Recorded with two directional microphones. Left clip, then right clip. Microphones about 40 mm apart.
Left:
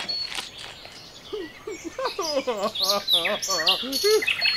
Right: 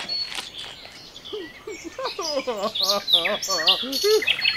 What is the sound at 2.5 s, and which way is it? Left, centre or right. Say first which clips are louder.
Bird: right 1 dB; right.